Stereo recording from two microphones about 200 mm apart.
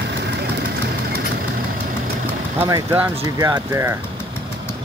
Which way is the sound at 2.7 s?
15° right (ahead or behind).